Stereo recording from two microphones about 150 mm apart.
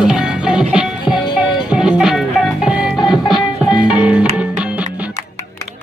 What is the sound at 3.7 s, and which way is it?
Music, 25° left (ahead or behind).